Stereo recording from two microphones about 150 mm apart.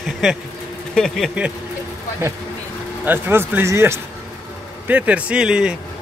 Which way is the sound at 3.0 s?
15° right (ahead or behind).